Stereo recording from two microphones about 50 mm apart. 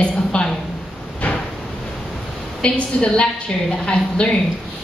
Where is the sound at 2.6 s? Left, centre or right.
Left.